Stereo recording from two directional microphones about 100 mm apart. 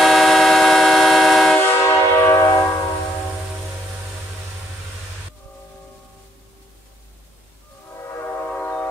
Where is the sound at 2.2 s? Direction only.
30° left (ahead or behind).